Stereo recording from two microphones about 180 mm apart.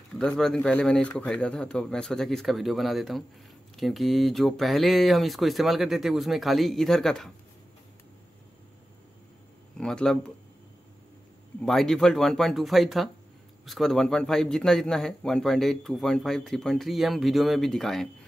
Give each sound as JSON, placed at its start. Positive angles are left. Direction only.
{"t": 0.1, "sound": "a man's voice", "side_deg": 5}
{"t": 9.8, "sound": "speech", "side_deg": 5}
{"t": 11.6, "sound": "a man's voice", "side_deg": 0}